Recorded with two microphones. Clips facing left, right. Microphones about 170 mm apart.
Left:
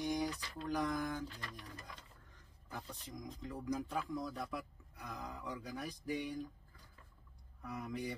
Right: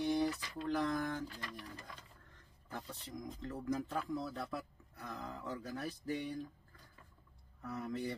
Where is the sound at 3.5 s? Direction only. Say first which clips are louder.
Right 1 dB; 10° left (ahead or behind).